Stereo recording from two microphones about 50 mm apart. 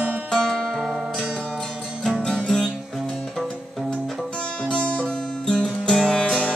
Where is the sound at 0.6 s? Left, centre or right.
Centre.